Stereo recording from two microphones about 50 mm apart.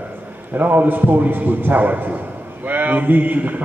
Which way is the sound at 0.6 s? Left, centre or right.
Right.